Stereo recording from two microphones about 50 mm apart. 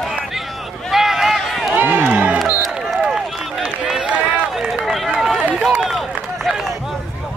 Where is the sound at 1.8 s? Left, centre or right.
Right.